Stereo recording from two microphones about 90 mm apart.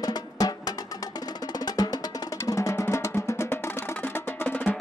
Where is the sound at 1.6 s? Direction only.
50° left (ahead or behind).